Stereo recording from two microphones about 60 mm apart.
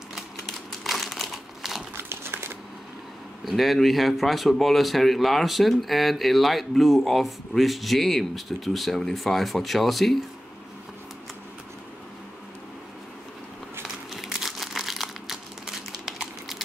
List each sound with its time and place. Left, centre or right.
0.8 s crumpling: centre
2.0 s a sound: right
3.4 s speech: centre
13.8 s crumpling: centre